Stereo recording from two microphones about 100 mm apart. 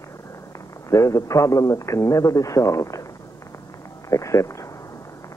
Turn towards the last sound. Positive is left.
turn(degrees=30)  # may be behind; listen again after turning